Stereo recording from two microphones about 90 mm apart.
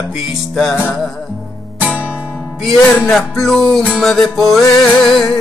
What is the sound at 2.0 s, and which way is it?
Music, 15° right (ahead or behind).